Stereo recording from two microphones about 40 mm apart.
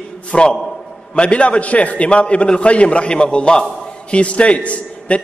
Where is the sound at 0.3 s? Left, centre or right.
Left.